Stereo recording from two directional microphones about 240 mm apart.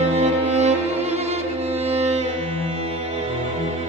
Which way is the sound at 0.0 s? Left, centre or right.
Right.